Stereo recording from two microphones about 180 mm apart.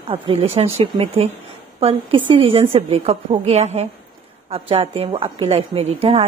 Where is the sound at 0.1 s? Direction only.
35° right (ahead or behind).